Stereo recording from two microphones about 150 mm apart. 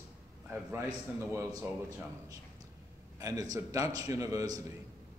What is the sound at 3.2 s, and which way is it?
A man's voice, 25° right (ahead or behind).